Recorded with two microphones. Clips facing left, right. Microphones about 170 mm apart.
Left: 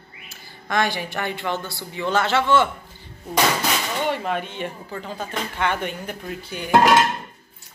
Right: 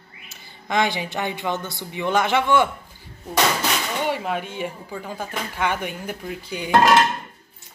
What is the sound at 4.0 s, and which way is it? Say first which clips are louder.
A woman's voice: left 1 dB; 10° right (ahead or behind).